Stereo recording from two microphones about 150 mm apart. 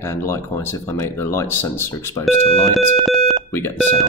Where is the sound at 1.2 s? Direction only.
15° left (ahead or behind).